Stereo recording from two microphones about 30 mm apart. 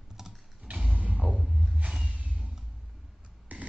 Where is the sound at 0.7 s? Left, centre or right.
Right.